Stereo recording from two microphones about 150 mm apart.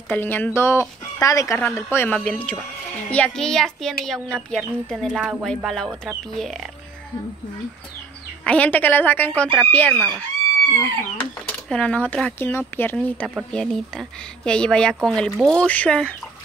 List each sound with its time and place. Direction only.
0.1 s speech: 15° left (ahead or behind)
8.5 s speech: 10° left (ahead or behind)